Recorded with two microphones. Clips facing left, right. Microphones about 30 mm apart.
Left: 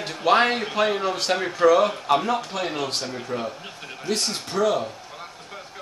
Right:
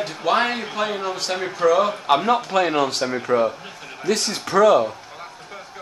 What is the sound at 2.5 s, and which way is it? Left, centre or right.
Speech, right.